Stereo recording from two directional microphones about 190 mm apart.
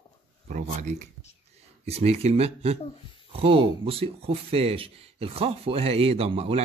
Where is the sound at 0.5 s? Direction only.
40° right (ahead or behind).